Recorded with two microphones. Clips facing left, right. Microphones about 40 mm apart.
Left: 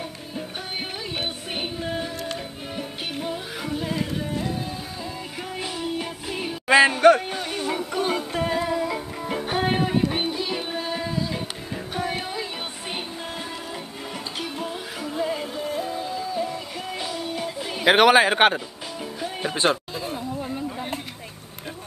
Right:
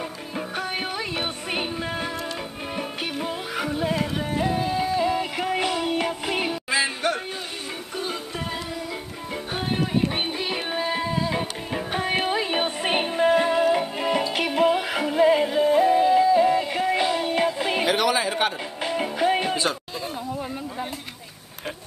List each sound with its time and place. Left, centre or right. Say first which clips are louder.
1.1 s music: right 2 dB; right
3.9 s music: right 2 dB; right
6.7 s music: left 11 dB; left
10.2 s music: even; right
17.8 s speech: left 9 dB; left
18.9 s music: right 10 dB; right
19.5 s a sound: left 3 dB; left